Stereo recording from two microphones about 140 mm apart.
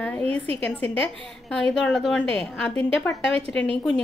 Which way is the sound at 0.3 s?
45° right (ahead or behind).